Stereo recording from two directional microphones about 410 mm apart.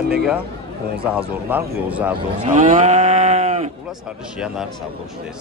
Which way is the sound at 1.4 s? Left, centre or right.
Centre.